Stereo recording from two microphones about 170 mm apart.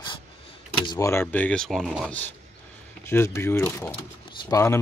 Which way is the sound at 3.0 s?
15° left (ahead or behind).